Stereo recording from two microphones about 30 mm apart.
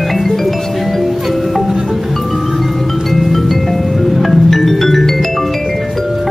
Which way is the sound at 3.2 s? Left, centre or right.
Centre.